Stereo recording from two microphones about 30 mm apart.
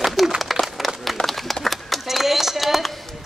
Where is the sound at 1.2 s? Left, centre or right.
Centre.